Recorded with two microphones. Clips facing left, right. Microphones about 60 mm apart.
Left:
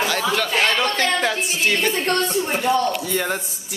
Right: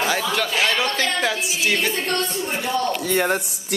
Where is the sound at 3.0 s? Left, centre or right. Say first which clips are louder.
Right 3 dB; right.